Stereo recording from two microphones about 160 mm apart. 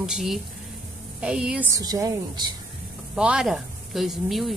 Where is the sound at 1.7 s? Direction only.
20° right (ahead or behind).